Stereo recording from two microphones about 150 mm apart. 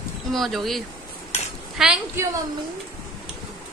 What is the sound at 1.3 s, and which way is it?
Cutlery, 50° left (ahead or behind).